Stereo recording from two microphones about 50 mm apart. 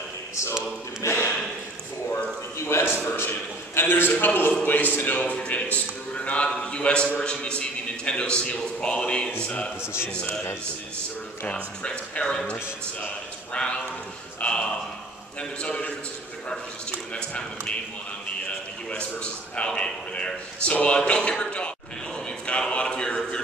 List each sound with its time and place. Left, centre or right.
1.0 s snort: left
2.6 s a man's voice: left
3.2 s a sound: left
3.8 s a man's voice: left
5.2 s a man's voice: left
11.4 s a man's voice: left
17.1 s a man's voice: centre
18.9 s a man's voice: left
22.5 s a sound: left